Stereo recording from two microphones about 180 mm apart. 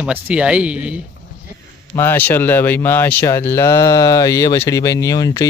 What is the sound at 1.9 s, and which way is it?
Speech, 10° left (ahead or behind).